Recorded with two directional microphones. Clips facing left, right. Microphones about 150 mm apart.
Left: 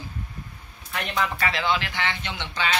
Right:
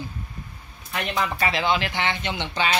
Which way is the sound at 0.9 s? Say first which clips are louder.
Right 1 dB; 15° right (ahead or behind).